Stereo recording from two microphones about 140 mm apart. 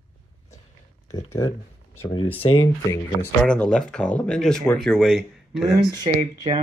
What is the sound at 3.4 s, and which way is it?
Speech, 5° left (ahead or behind).